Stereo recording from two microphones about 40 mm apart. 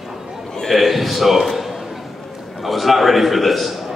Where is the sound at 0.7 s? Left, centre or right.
Centre.